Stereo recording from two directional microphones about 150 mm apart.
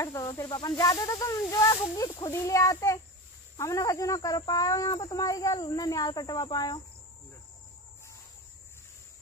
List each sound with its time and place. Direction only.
0.0 s snake: 20° left (ahead or behind)
0.4 s speech: 30° left (ahead or behind)